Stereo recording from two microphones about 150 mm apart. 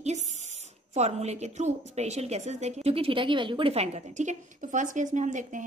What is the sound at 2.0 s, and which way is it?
A woman's voice, 45° right (ahead or behind).